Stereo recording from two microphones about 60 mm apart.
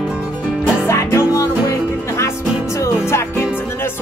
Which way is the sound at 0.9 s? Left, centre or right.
Left.